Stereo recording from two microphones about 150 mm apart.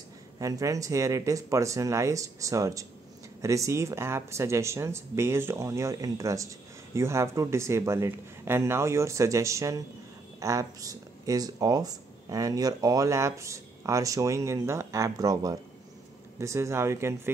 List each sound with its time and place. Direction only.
0.4 s speech: 20° right (ahead or behind)